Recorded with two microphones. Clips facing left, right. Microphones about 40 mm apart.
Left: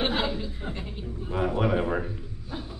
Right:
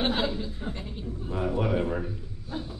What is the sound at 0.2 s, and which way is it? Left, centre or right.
Chuckle, left.